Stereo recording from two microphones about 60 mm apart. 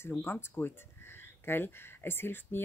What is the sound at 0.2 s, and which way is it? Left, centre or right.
Speech, left.